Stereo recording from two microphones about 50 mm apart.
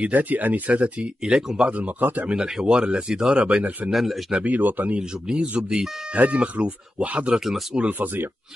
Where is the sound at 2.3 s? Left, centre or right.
Centre; by 3.8 s right.